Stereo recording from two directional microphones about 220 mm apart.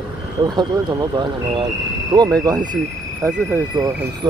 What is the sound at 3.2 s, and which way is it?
Speech, 15° right (ahead or behind).